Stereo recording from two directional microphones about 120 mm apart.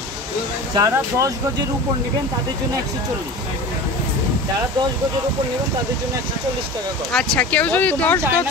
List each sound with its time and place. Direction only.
0.7 s speech: 30° right (ahead or behind)
7.1 s speech: 5° left (ahead or behind)